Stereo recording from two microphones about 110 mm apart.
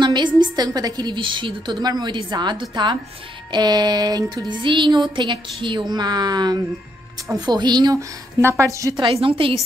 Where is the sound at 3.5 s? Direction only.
40° right (ahead or behind).